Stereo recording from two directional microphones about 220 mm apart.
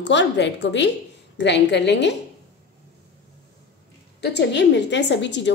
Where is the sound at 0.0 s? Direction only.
55° left (ahead or behind).